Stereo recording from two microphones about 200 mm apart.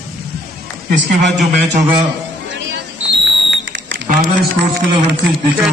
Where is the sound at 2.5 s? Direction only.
65° right (ahead or behind).